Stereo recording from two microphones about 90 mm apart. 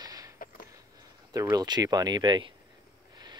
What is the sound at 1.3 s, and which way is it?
Speech, 45° right (ahead or behind).